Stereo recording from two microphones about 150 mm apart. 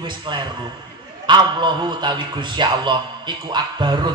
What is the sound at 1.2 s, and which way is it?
A man's voice, 30° right (ahead or behind).